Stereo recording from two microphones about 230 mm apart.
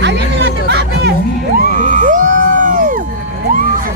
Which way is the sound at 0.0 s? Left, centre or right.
Right.